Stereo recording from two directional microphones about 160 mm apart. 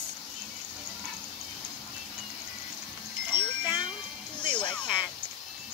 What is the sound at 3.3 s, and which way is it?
Wind chime, 30° left (ahead or behind).